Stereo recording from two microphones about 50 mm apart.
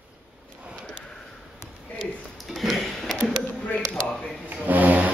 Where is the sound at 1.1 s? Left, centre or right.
Centre.